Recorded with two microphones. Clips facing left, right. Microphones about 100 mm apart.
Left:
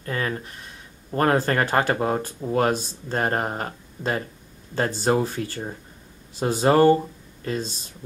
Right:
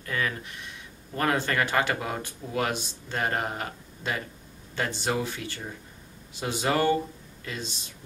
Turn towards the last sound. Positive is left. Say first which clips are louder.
# left 8 dB
turn(degrees=40)  # may be behind; listen again after turning